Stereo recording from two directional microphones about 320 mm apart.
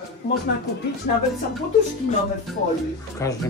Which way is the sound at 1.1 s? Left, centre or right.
Left.